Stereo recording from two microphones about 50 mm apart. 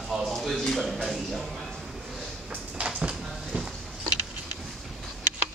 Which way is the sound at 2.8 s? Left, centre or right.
Centre.